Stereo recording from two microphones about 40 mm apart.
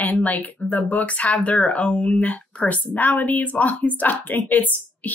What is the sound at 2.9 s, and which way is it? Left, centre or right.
A woman's voice, left.